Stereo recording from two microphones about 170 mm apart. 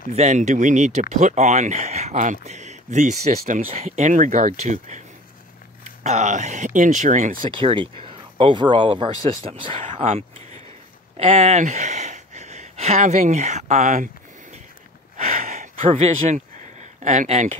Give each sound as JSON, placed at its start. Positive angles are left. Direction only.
{"t": 0.1, "sound": "speech", "side_deg": -40}
{"t": 5.9, "sound": "speech", "side_deg": -45}
{"t": 7.4, "sound": "speech", "side_deg": -30}
{"t": 9.8, "sound": "speech", "side_deg": -45}
{"t": 11.1, "sound": "a sound", "side_deg": -40}
{"t": 15.8, "sound": "speech", "side_deg": -45}